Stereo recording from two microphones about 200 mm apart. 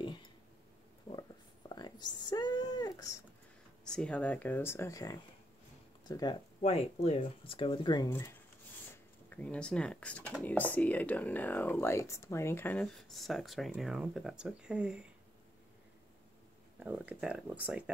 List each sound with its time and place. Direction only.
1.7 s a sound: 20° left (ahead or behind)
3.8 s speech: 5° left (ahead or behind); by 6.3 s 20° left (ahead or behind)
6.6 s speech: 30° left (ahead or behind)
8.9 s speech: 10° left (ahead or behind)
16.8 s speech: 5° right (ahead or behind)